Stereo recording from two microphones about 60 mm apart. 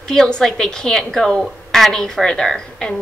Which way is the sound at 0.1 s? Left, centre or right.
Centre.